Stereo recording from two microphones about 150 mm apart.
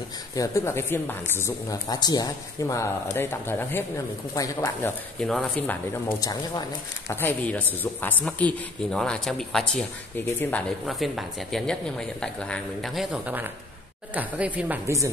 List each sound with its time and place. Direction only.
0.4 s speech: 20° left (ahead or behind)
5.2 s speech: 5° left (ahead or behind)
6.1 s speech: 25° left (ahead or behind); by 9.8 s 5° left (ahead or behind)
10.9 s speech: centre (ahead or behind); by 15.0 s 15° right (ahead or behind)